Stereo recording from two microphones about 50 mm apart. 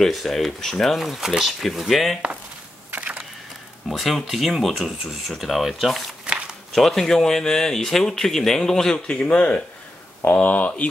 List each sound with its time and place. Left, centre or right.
0.0 s speech: centre
1.0 s speech: centre
2.9 s a sound: right
3.9 s speech: centre
6.2 s a sound: right
6.7 s speech: centre
8.9 s speech: centre
10.2 s speech: left